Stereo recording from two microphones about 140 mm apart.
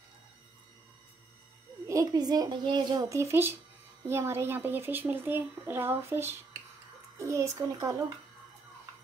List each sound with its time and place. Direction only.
1.9 s a child's voice: 25° right (ahead or behind)